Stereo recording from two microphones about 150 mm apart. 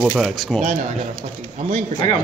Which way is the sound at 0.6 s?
55° right (ahead or behind).